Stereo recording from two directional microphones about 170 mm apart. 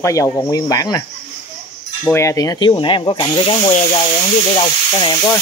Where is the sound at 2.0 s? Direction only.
15° left (ahead or behind).